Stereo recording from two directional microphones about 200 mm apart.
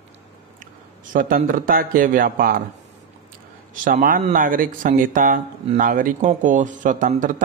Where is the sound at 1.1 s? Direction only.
45° right (ahead or behind).